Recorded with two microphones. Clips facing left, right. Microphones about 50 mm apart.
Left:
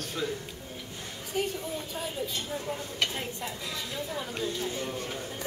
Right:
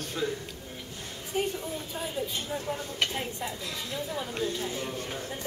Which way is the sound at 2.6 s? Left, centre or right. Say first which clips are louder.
Even; centre.